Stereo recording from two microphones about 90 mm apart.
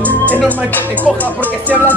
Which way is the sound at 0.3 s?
20° left (ahead or behind).